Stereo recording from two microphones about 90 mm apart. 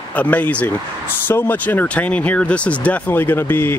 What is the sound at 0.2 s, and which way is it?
Speech, 15° left (ahead or behind).